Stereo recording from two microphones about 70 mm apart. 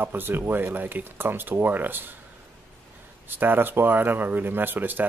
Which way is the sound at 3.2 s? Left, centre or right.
Right.